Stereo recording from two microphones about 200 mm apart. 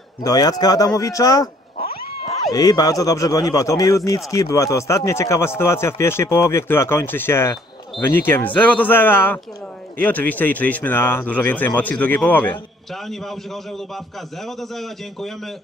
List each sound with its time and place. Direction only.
0.2 s speech: 20° left (ahead or behind)
2.5 s a man's voice: 20° left (ahead or behind); by 13.4 s centre (ahead or behind)
14.4 s a man's voice: centre (ahead or behind)